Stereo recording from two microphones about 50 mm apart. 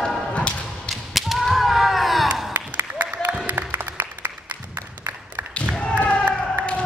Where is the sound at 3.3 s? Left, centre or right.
Right.